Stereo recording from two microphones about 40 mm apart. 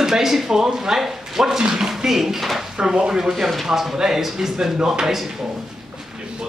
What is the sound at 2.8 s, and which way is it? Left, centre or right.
Speech, centre.